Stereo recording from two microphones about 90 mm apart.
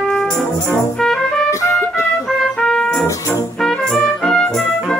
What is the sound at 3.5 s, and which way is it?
Music, 5° left (ahead or behind).